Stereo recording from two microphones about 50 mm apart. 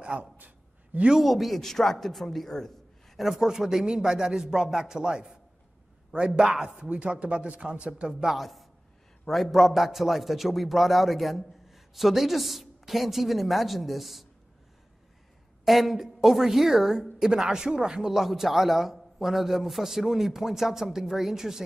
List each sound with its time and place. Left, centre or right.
0.0 s a sound: right
0.9 s a man's voice: centre
1.2 s a man's voice: centre
3.3 s a woman's voice: centre
8.4 s a man's voice: centre
15.6 s a woman's voice: centre